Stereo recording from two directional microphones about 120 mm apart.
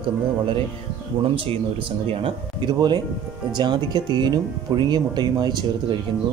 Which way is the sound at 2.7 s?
40° right (ahead or behind).